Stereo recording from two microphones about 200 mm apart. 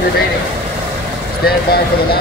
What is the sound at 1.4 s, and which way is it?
Speech, 50° left (ahead or behind).